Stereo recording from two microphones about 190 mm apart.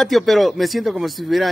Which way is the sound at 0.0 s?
Centre (ahead or behind).